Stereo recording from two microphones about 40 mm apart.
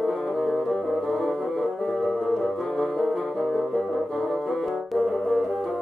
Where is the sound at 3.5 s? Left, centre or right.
Centre.